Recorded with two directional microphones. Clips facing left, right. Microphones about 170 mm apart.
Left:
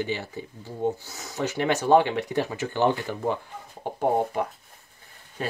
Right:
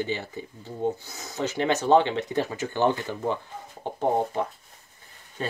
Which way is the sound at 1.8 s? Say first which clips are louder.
Left 1 dB; 15° left (ahead or behind).